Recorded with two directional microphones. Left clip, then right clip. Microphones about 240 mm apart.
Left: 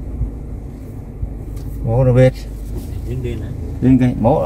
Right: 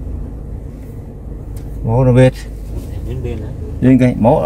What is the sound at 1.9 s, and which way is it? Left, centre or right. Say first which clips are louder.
Speech: right 2 dB; centre.